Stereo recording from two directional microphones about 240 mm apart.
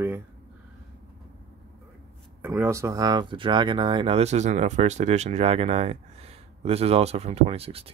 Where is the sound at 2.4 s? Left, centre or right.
Centre.